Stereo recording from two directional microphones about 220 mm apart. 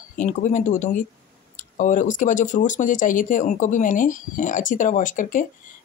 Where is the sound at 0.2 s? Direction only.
35° left (ahead or behind).